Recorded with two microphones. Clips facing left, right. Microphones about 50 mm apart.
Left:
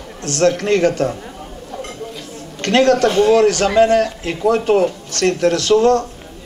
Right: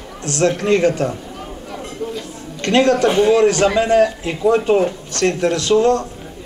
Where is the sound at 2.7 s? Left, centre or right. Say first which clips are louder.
Left 1 dB; centre.